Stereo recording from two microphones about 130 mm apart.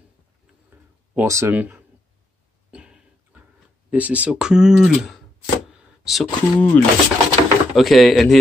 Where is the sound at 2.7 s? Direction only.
5° right (ahead or behind).